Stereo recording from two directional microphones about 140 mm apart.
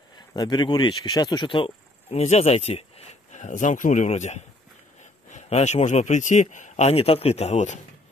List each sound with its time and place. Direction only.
0.3 s a man's voice: 30° left (ahead or behind); by 7.8 s 55° left (ahead or behind)